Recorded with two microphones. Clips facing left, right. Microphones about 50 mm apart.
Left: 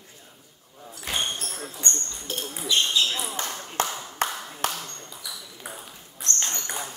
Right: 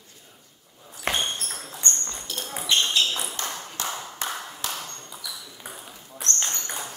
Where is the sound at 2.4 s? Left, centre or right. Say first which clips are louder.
Even; right.